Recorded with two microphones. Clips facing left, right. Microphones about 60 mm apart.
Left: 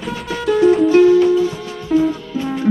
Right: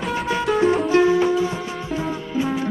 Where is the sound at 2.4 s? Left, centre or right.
Centre.